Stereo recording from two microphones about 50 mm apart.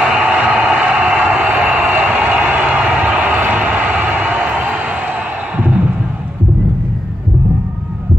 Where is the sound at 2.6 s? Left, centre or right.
Right.